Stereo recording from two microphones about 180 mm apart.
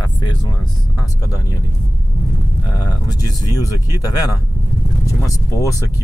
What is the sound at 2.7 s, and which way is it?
Speech, 20° left (ahead or behind).